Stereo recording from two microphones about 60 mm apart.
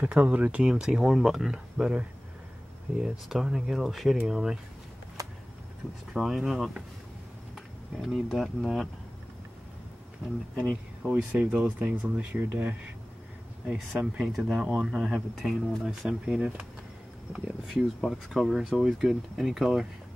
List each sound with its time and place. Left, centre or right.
0.0 s speech: right
0.7 s speech: centre
1.8 s speech: centre
3.0 s speech: centre
5.2 s a sound: right
6.1 s speech: centre
11.0 s speech: centre
13.7 s speech: centre
14.7 s speech: centre
15.0 s speech: centre
17.6 s speech: centre